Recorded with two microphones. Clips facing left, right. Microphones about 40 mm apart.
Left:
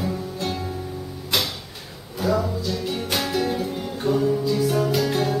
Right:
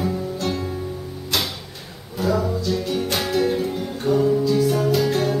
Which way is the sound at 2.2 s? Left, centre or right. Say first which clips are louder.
Right 1 dB; centre.